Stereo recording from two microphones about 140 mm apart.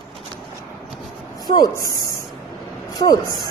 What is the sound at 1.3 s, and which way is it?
Speech, 25° left (ahead or behind).